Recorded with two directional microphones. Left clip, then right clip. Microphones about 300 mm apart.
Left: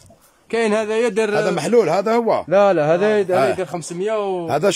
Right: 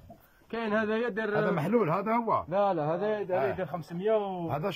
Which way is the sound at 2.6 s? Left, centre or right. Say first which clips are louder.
Left 16 dB; left.